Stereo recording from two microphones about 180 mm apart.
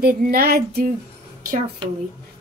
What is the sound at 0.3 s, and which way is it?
Speech, 55° right (ahead or behind).